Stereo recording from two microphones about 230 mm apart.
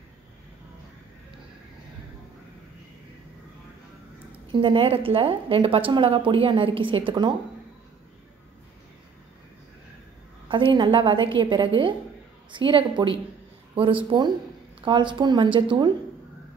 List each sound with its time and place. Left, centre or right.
4.5 s a woman's voice: right
10.5 s a woman's voice: right